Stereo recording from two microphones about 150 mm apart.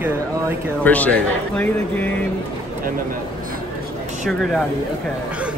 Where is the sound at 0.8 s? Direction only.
10° left (ahead or behind).